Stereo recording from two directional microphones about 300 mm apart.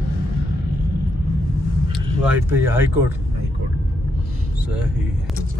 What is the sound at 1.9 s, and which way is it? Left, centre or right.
Speech, centre.